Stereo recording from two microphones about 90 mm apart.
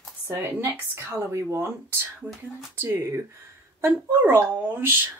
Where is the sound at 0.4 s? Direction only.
25° right (ahead or behind).